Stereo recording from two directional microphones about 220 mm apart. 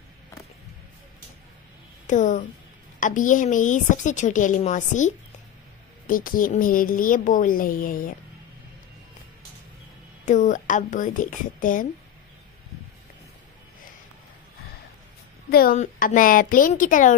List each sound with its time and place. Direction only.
2.0 s a woman's voice: 35° left (ahead or behind)
10.2 s a woman's voice: 35° left (ahead or behind)
15.5 s a woman's voice: 40° left (ahead or behind)